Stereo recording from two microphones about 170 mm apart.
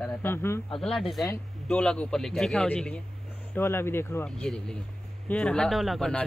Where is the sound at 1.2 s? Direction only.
10° left (ahead or behind).